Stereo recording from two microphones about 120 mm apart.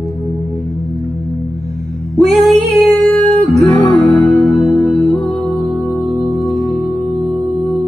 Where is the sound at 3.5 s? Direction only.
5° left (ahead or behind).